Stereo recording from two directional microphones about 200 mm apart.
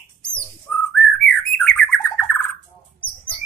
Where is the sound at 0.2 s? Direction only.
5° left (ahead or behind).